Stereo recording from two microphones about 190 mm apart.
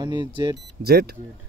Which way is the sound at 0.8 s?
55° right (ahead or behind).